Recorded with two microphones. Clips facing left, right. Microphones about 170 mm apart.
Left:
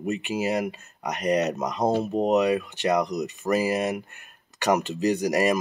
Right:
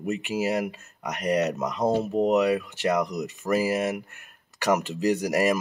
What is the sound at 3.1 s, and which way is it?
Speech, centre (ahead or behind).